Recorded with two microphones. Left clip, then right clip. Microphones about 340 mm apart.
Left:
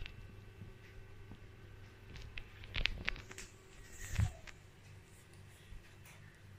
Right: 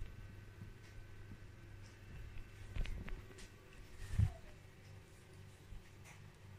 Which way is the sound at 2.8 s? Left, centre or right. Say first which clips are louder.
Left 16 dB; left.